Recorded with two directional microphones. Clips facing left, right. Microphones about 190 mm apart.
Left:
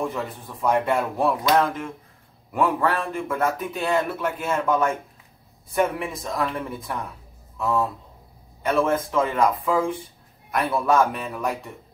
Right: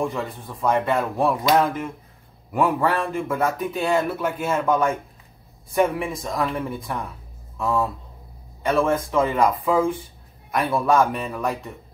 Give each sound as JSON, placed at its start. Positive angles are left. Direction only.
{"t": 0.1, "sound": "a man's voice", "side_deg": 5}
{"t": 1.1, "sound": "a man's voice", "side_deg": -5}